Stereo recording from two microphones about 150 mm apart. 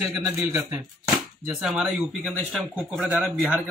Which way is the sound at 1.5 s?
Centre (ahead or behind).